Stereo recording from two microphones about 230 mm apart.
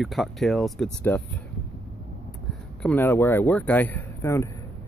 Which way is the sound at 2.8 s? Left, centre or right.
Centre.